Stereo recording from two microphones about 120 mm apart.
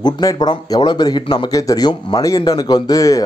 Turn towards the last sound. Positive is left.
turn(degrees=30)  # may be behind; listen again after turning